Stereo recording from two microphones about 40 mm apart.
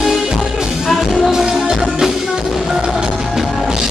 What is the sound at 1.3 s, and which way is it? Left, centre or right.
Music, centre.